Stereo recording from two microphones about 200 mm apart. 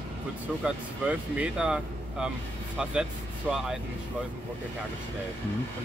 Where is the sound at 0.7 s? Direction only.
5° right (ahead or behind).